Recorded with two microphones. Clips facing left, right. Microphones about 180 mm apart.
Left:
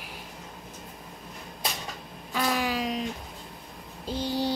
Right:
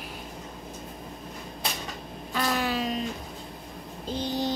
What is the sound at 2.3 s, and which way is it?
Wail, 10° left (ahead or behind).